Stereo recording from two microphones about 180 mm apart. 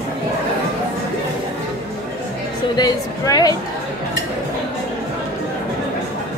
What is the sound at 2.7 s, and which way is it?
Speech, 20° left (ahead or behind).